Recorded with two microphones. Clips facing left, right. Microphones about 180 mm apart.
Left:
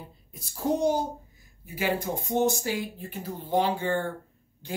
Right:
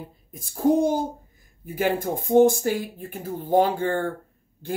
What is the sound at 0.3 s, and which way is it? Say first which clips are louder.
Speech: right 7 dB; 50° right (ahead or behind).